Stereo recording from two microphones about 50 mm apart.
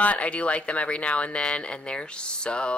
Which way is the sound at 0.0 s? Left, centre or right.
Left.